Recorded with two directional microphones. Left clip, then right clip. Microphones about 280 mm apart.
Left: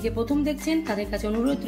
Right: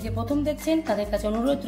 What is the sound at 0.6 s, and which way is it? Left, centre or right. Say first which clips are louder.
Speech: right 2 dB; centre.